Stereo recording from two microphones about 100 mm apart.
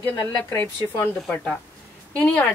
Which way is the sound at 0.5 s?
20° left (ahead or behind).